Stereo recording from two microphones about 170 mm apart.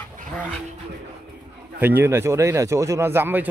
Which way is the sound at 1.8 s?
10° right (ahead or behind).